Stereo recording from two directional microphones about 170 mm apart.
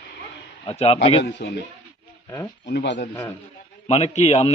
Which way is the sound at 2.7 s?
80° left.